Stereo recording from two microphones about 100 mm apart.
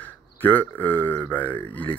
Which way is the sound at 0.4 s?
20° left (ahead or behind).